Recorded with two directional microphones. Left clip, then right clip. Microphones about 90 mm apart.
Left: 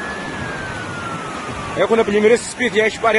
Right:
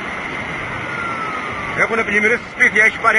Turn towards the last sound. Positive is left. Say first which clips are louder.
# right 4 dB
turn(degrees=45)  # may be behind; listen again after turning